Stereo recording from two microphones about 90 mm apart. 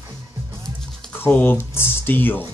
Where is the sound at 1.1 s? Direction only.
25° left (ahead or behind).